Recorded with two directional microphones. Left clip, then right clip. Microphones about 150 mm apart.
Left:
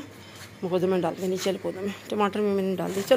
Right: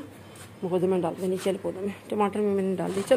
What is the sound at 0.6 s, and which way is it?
Speech, centre (ahead or behind).